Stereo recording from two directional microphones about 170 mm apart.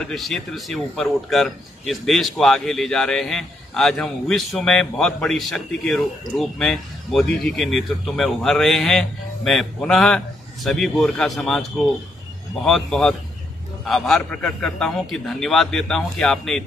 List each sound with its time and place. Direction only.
0.0 s a man's voice: centre (ahead or behind)
12.6 s a man's voice: centre (ahead or behind)